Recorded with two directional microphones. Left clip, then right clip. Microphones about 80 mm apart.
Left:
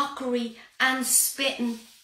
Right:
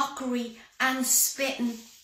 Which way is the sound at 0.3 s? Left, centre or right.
Left.